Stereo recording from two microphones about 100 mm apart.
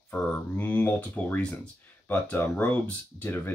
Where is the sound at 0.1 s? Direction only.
15° left (ahead or behind).